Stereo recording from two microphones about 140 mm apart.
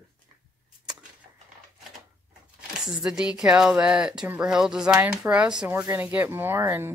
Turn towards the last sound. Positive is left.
turn(degrees=-15)  # may be behind; listen again after turning